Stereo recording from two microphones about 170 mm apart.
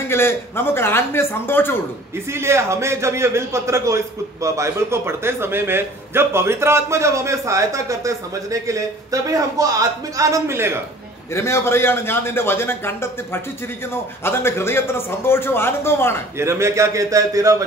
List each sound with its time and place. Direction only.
0.1 s a man's voice: 15° left (ahead or behind)
2.3 s a man's voice: 15° right (ahead or behind)
11.3 s a man's voice: 15° left (ahead or behind)
16.3 s a man's voice: 15° right (ahead or behind)